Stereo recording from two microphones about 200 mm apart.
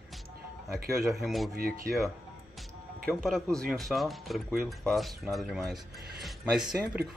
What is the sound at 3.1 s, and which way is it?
Speech, centre (ahead or behind).